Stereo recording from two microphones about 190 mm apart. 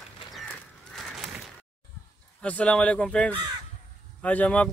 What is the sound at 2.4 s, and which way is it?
Speech, 5° left (ahead or behind).